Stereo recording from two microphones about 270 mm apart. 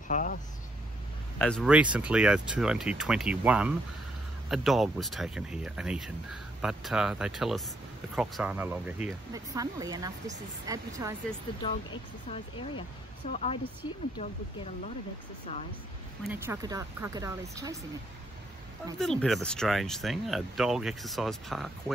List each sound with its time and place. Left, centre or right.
0.1 s speech: left
1.4 s speech: centre
11.6 s speech: centre
16.3 s speech: centre
18.9 s speech: centre